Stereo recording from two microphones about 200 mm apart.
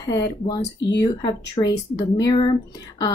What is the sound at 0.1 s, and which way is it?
Speech, 20° left (ahead or behind).